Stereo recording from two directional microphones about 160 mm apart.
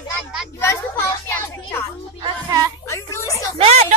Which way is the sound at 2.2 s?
20° right (ahead or behind).